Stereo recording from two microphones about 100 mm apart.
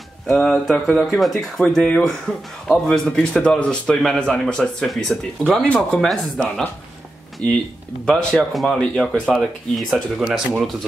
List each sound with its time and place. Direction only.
0.3 s speech: 5° left (ahead or behind)
8.0 s speech: 5° left (ahead or behind)